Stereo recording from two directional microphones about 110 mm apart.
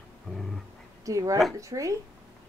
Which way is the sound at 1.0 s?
30° right (ahead or behind).